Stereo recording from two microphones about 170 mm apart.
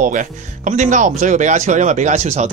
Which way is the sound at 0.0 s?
50° right (ahead or behind).